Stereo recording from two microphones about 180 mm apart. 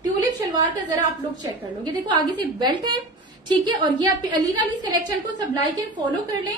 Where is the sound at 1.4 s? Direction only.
25° right (ahead or behind).